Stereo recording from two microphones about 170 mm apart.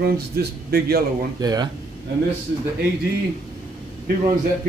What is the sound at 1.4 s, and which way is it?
Speech, 25° right (ahead or behind).